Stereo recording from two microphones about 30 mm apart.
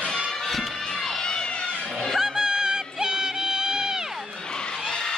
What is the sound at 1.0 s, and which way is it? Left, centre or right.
Crowd, left.